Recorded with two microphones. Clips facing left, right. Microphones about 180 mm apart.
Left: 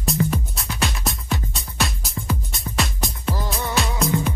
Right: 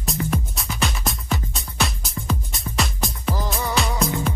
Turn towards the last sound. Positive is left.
turn(degrees=0)  # may be behind; listen again after turning